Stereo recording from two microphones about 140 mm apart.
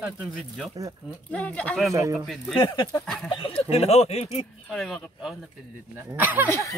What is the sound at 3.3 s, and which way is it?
Speech, 40° left (ahead or behind).